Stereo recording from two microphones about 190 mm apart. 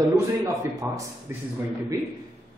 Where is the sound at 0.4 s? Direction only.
15° right (ahead or behind).